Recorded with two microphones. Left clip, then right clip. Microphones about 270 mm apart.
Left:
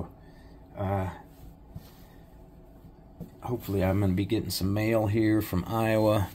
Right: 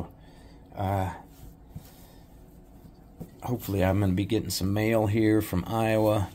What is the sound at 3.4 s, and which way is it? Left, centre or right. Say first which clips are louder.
Speech: right 2 dB; right.